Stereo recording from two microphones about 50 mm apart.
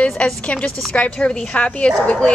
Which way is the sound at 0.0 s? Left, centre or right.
Left.